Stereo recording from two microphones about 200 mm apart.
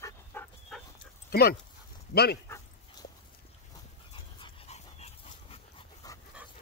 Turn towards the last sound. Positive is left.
turn(degrees=30)  # may be behind; listen again after turning